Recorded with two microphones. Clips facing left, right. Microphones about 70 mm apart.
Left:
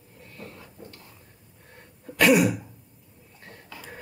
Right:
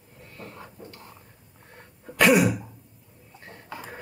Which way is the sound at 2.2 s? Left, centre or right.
Centre.